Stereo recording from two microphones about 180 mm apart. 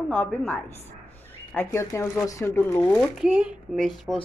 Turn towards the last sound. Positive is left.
turn(degrees=0)  # may be behind; listen again after turning